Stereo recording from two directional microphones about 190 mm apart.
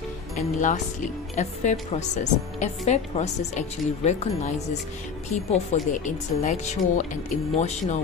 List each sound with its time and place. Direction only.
0.4 s a woman's voice: 40° left (ahead or behind)